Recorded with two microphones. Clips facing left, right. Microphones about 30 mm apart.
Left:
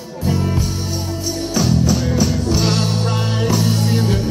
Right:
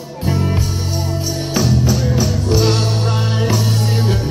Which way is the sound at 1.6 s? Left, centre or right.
Centre.